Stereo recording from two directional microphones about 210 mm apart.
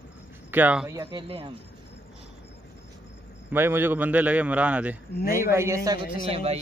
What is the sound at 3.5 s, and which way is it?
A man's voice, 10° right (ahead or behind).